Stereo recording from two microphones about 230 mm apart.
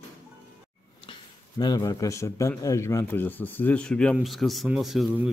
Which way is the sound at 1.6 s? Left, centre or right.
Centre.